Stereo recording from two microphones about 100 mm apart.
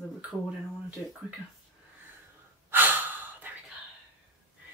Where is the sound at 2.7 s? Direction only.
20° right (ahead or behind).